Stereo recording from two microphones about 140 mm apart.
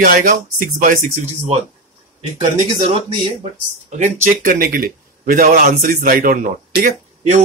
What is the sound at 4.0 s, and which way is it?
Speech, 65° right (ahead or behind).